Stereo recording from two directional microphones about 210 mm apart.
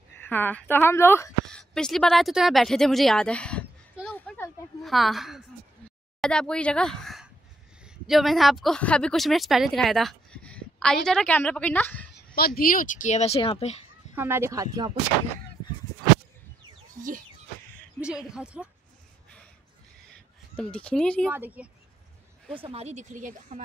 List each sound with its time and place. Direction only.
0.2 s a woman's voice: 10° left (ahead or behind)
12.4 s speech: 45° left (ahead or behind); by 14.1 s 30° left (ahead or behind)
14.1 s speech: 10° right (ahead or behind)
18.0 s speech: 5° right (ahead or behind)
20.5 s speech: 5° left (ahead or behind)
21.3 s speech: 10° right (ahead or behind)
22.5 s speech: 25° right (ahead or behind)